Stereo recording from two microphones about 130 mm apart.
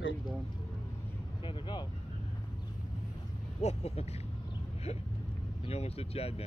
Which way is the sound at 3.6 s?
55° left (ahead or behind).